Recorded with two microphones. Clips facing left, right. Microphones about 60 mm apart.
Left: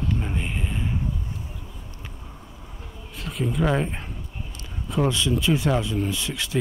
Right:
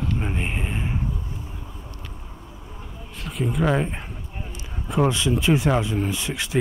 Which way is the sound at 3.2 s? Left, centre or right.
Centre.